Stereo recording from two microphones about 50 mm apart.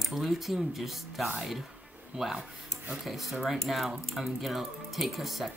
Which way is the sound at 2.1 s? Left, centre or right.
Centre.